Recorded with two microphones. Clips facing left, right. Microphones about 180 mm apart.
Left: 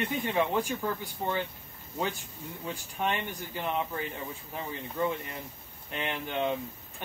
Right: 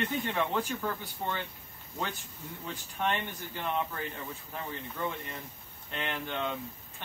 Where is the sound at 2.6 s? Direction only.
10° left (ahead or behind).